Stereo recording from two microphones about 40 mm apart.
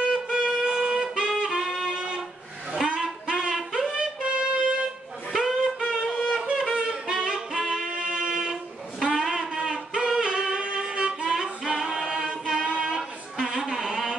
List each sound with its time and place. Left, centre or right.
0.1 s music: centre
2.7 s a sound: centre
3.7 s music: right
5.3 s wind instrument: centre
5.8 s wind instrument: right
6.4 s saxophone: centre
7.9 s a sound: right
9.0 s music: centre
11.3 s a capella: centre